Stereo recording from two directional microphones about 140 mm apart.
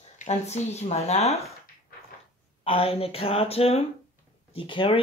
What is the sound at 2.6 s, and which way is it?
Speech, 40° left (ahead or behind).